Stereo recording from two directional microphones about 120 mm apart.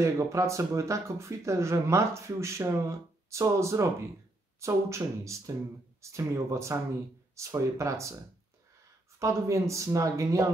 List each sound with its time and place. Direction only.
0.0 s speech: 25° right (ahead or behind)
9.2 s speech: 25° right (ahead or behind)